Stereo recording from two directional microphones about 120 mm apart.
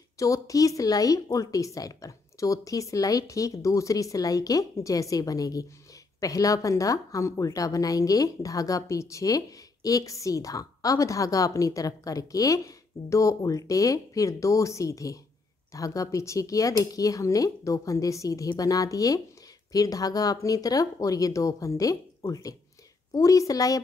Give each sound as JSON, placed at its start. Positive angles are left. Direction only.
{"t": 0.2, "sound": "speech", "side_deg": 30}